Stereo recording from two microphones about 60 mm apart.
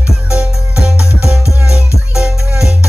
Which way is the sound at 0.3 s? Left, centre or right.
Centre.